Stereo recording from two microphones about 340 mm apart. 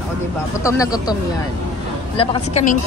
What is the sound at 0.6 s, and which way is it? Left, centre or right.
Speech, centre.